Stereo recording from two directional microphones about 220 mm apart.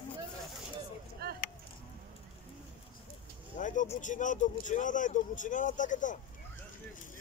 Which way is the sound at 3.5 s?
35° left (ahead or behind).